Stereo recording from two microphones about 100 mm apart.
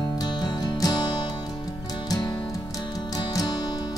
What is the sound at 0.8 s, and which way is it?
Music, 45° left (ahead or behind).